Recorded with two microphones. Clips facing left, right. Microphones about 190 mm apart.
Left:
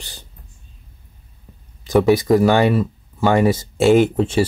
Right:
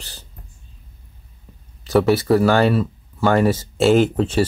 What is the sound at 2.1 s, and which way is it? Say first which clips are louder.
Speech: left 2 dB; 15° left (ahead or behind).